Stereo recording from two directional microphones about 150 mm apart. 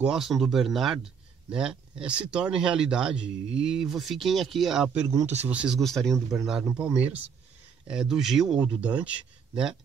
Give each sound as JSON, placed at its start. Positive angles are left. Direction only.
{"t": 0.0, "sound": "speech", "side_deg": -5}
{"t": 5.2, "sound": "speech", "side_deg": -50}
{"t": 5.5, "sound": "a man's voice", "side_deg": -5}